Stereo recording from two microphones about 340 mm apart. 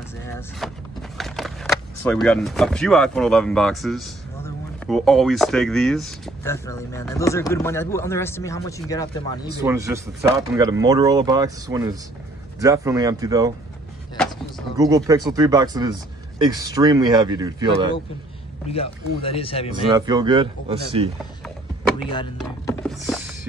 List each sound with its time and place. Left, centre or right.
0.6 s speech: centre
9.6 s speech: centre
14.8 s speech: centre
18.7 s speech: centre
19.7 s speech: centre
22.4 s a sound: centre